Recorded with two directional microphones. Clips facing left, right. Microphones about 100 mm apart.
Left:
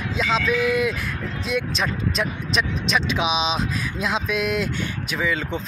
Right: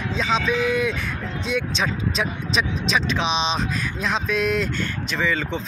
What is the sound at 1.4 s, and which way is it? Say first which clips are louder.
Speech: even; centre (ahead or behind).